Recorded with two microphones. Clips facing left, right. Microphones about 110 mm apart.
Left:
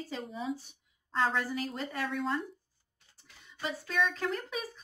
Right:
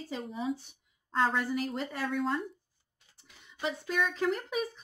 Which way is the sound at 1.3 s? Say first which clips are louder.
Right 2 dB; 25° right (ahead or behind).